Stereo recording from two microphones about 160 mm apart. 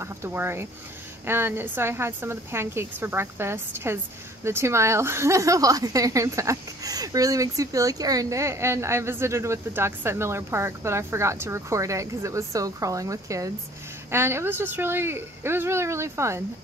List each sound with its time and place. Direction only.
0.0 s a woman's voice: 15° right (ahead or behind)